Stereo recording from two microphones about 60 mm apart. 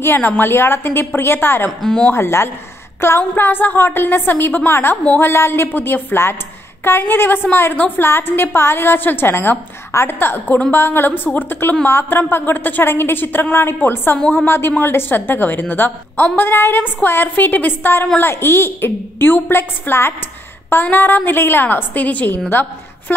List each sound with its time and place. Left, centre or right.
0.0 s a woman's voice: left
1.8 s speech: centre
2.1 s a woman's voice: left
20.7 s a woman's voice: left